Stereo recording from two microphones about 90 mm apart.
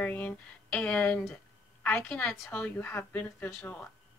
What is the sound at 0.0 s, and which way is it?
A woman's voice, 20° left (ahead or behind).